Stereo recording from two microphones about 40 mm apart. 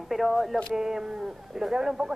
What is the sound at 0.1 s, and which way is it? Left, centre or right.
Speech, centre.